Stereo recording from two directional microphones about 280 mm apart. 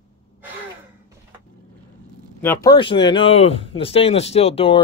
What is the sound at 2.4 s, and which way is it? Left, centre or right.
Speech, centre.